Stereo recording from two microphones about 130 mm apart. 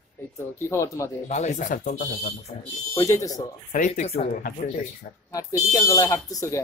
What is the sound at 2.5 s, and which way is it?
Speech, 55° left (ahead or behind).